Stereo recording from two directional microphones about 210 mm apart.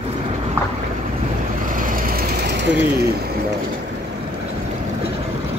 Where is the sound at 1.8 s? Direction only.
40° right (ahead or behind).